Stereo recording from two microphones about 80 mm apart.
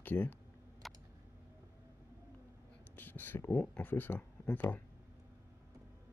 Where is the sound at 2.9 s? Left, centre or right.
Left.